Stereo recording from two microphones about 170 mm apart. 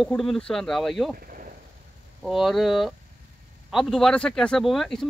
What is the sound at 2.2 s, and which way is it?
Speech, centre (ahead or behind).